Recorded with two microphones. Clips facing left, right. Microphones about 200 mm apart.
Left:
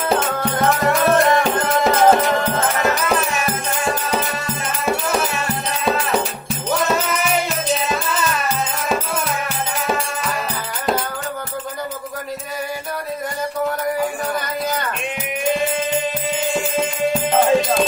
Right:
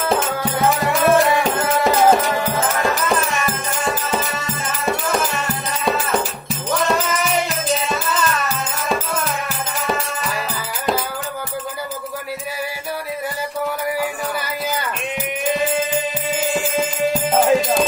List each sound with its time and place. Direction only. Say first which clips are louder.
0.6 s music: left 1 dB; centre (ahead or behind)
15.4 s music: even; centre (ahead or behind)